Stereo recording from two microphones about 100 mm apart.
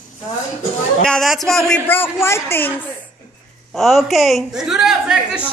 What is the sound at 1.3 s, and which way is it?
Speech, centre (ahead or behind).